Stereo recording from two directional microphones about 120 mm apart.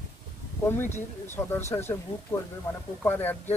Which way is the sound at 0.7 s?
20° left (ahead or behind).